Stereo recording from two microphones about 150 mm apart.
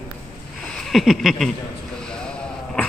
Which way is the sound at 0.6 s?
Centre (ahead or behind).